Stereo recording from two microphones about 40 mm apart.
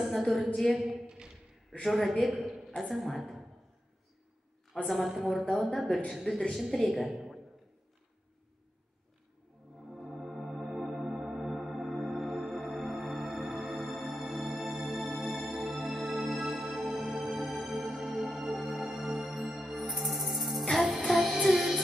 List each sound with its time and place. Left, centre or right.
0.0 s a woman's voice: centre
4.8 s a woman's voice: centre
6.3 s speech: left
6.7 s a woman's voice: centre
10.2 s music: centre